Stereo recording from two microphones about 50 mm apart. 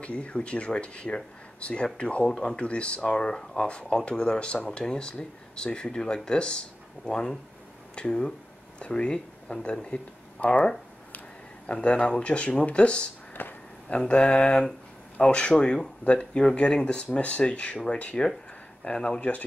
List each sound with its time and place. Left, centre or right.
0.0 s speech: left
11.6 s speech: left
13.3 s a sound: left
13.8 s speech: left